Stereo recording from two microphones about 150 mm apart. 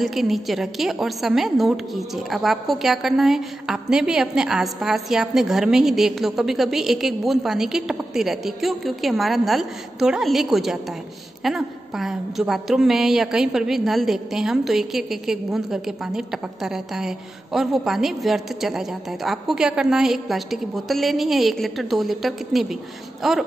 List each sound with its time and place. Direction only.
0.0 s a woman's voice: centre (ahead or behind)